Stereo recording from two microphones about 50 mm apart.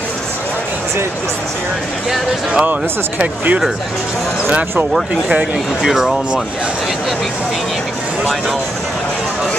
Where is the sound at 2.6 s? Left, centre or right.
Right.